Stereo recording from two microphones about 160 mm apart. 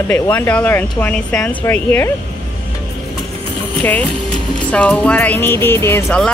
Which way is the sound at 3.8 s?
10° left (ahead or behind).